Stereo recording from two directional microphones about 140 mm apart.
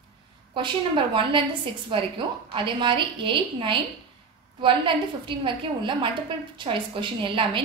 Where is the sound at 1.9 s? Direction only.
35° right (ahead or behind).